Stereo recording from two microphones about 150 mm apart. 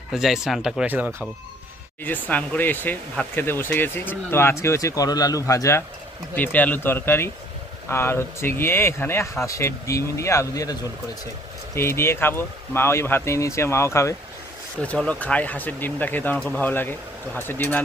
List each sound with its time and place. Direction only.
0.1 s speech: centre (ahead or behind)
2.0 s speech: 10° left (ahead or behind)